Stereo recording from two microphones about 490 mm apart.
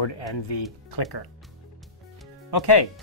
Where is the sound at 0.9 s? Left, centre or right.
Left.